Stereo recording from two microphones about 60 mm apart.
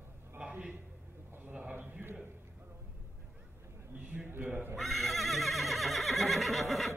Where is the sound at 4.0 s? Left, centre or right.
Right.